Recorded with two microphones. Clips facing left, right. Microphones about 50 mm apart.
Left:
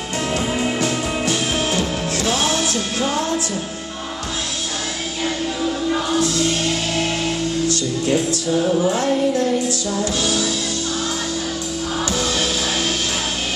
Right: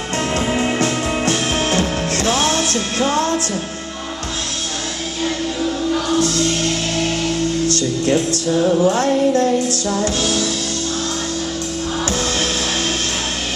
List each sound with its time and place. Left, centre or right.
0.6 s music: right
6.1 s music: right
7.6 s speech: right
8.8 s music: right
12.2 s music: right